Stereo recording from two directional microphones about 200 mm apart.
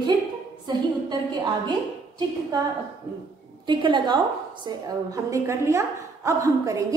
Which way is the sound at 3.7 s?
25° right (ahead or behind).